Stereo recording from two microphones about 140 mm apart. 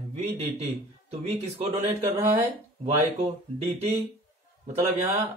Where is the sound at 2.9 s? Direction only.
50° right (ahead or behind).